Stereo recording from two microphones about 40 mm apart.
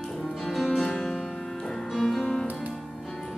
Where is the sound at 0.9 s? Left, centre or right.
Left.